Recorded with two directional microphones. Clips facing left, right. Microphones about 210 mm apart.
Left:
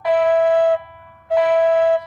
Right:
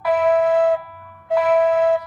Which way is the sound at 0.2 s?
Centre (ahead or behind).